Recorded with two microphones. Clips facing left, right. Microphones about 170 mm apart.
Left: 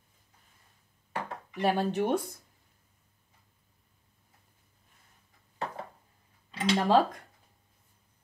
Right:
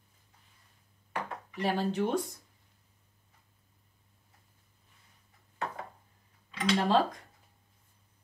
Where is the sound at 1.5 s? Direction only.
60° left (ahead or behind).